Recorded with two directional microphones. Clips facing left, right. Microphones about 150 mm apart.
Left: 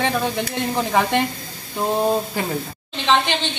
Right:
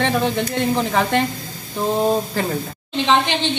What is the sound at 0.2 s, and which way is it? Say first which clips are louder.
Speech: right 3 dB; 10° left (ahead or behind).